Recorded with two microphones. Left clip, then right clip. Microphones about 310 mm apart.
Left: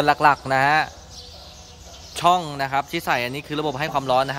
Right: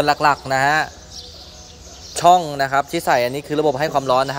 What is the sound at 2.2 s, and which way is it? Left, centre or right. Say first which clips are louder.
Speech: right 6 dB; centre.